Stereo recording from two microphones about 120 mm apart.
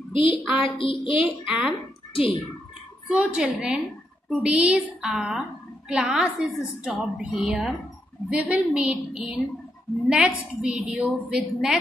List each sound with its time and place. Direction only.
0.1 s a woman's voice: 50° left (ahead or behind)
0.7 s child singing: 50° left (ahead or behind)
1.2 s a woman's voice: 10° right (ahead or behind)
1.7 s a woman's voice: 50° left (ahead or behind)
3.1 s a woman's voice: 10° right (ahead or behind)